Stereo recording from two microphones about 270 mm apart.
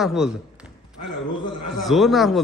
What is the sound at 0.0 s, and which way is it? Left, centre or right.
Speech, centre.